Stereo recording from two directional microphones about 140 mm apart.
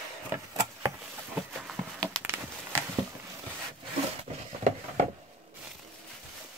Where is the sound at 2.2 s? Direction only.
15° right (ahead or behind).